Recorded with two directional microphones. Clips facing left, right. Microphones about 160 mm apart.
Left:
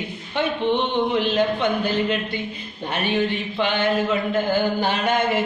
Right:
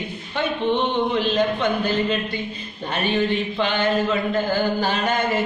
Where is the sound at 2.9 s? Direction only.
10° left (ahead or behind).